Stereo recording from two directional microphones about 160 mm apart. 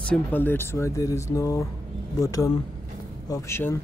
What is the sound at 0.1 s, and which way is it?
Speech, 10° left (ahead or behind).